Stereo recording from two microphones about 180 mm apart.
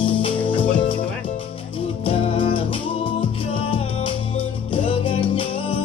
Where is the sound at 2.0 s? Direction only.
30° left (ahead or behind).